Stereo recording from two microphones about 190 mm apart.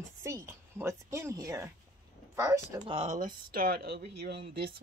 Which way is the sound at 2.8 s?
35° right (ahead or behind).